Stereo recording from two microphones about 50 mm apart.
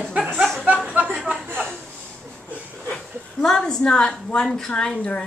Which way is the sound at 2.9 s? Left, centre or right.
Centre.